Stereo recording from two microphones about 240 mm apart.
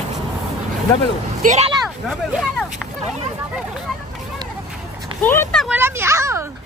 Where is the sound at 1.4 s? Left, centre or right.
Right.